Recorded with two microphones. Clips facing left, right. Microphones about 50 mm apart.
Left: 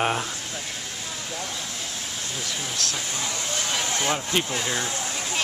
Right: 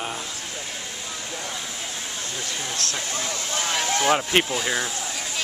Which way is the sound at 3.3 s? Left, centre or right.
Right.